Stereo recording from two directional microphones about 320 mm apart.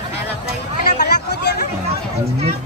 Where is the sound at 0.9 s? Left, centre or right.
Left.